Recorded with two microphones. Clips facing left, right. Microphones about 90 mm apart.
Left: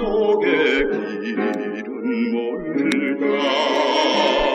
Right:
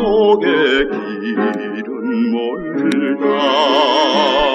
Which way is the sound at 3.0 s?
55° right (ahead or behind).